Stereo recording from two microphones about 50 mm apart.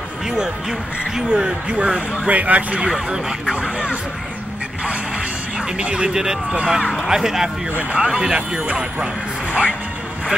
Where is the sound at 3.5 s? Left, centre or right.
Right.